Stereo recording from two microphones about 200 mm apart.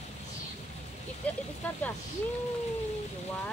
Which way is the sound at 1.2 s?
5° left (ahead or behind).